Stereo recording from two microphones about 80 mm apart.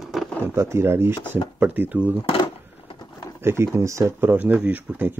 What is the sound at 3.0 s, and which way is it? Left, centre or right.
Pigeon, left.